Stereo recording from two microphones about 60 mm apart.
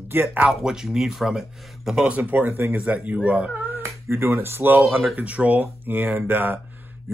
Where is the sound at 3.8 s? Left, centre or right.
Right.